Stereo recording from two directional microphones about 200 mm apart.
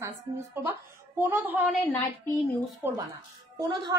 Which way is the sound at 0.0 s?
15° right (ahead or behind).